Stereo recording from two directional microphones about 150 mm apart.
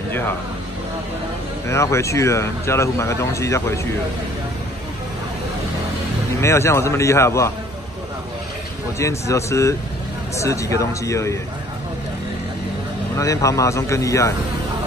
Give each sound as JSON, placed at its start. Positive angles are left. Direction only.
{"t": 1.7, "sound": "speech", "side_deg": 20}
{"t": 6.4, "sound": "speech", "side_deg": 20}
{"t": 8.9, "sound": "speech", "side_deg": 20}
{"t": 13.1, "sound": "speech", "side_deg": 20}